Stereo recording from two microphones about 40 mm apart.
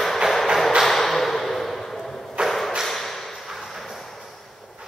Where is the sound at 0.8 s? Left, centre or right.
Centre.